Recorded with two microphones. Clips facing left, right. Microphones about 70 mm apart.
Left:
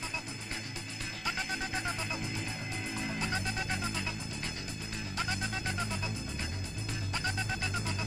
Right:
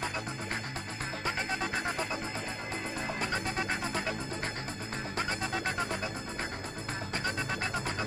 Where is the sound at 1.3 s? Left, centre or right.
Right.